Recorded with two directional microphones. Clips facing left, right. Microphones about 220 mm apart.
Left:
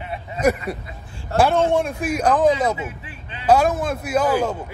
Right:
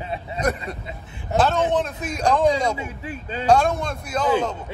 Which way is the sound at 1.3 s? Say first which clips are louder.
Left 2 dB; 20° right (ahead or behind).